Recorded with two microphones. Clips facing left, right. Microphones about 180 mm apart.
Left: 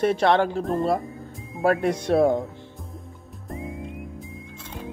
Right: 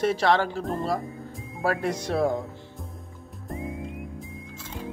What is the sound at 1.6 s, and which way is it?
Speech, 55° left (ahead or behind).